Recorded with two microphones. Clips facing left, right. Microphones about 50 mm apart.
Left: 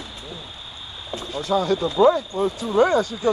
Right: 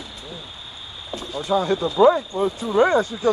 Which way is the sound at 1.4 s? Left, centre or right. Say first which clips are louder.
Even; centre.